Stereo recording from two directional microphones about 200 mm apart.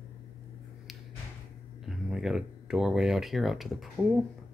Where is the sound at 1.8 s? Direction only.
Centre (ahead or behind).